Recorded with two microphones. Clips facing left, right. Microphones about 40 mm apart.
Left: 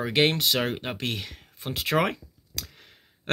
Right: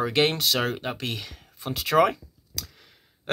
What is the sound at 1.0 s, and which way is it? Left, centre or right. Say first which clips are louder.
Speech: left 1 dB; left.